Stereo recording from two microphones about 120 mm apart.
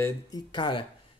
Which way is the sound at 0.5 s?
40° left (ahead or behind).